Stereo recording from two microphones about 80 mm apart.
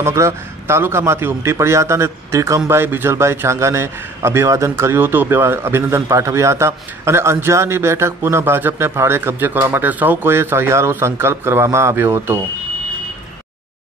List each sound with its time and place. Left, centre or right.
0.0 s a man's voice: right